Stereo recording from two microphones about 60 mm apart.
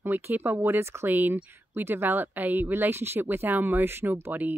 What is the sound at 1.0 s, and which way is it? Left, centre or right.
Speech, right.